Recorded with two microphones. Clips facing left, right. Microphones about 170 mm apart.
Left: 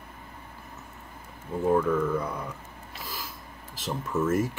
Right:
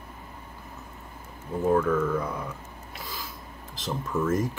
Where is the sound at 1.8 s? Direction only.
10° left (ahead or behind).